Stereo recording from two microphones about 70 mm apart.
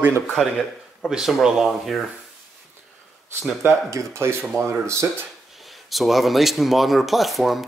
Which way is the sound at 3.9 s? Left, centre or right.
Right.